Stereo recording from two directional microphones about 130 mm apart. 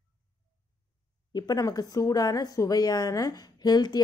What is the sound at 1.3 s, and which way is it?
A woman's voice, 30° left (ahead or behind).